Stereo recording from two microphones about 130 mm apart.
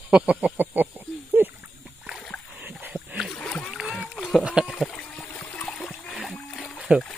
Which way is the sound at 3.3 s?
15° left (ahead or behind).